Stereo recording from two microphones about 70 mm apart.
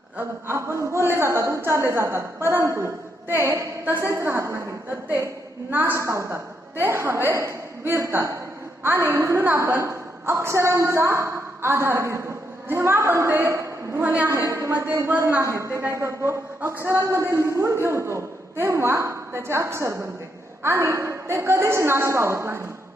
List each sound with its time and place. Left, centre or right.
0.2 s a woman's voice: right
5.7 s a woman's voice: right
5.9 s a woman's voice: right
14.0 s a woman's voice: right
14.4 s a woman's voice: right
15.0 s a woman's voice: right
15.4 s a woman's voice: right